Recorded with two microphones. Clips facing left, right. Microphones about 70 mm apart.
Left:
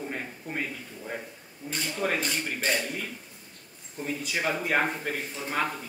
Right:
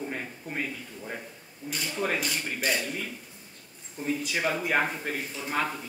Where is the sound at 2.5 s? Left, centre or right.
Left.